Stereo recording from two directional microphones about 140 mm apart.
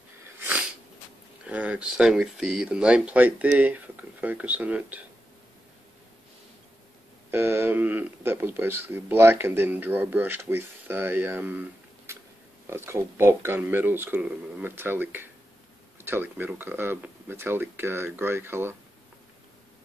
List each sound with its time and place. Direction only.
0.4 s sneeze: 10° right (ahead or behind)
1.5 s speech: 10° right (ahead or behind)
7.2 s speech: 15° right (ahead or behind)
12.1 s a sound: 20° right (ahead or behind)
12.6 s speech: 20° right (ahead or behind)